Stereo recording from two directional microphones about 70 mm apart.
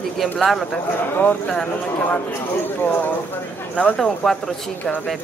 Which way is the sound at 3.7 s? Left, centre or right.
Centre.